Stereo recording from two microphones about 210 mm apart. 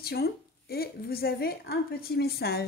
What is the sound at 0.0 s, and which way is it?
Speech, 50° left (ahead or behind).